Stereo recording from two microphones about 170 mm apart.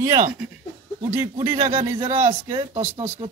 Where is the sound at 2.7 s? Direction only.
40° right (ahead or behind).